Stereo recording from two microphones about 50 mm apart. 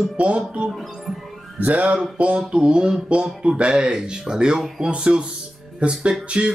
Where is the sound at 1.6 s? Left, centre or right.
Right.